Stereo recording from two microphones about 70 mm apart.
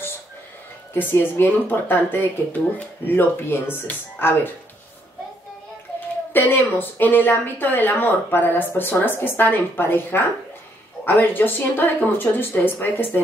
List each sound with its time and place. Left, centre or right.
0.9 s speech: left
6.3 s speech: left